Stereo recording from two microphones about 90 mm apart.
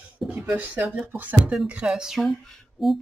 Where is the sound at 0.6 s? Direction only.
20° right (ahead or behind).